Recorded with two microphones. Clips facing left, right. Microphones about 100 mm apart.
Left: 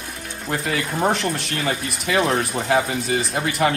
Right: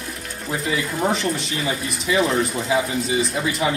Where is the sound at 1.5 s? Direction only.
60° left (ahead or behind).